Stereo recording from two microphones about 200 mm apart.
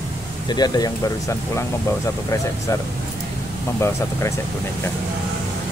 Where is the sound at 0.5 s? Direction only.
20° left (ahead or behind).